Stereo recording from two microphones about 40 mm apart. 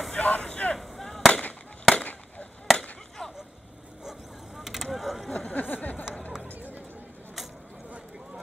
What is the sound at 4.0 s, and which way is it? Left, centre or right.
Vehicle, centre.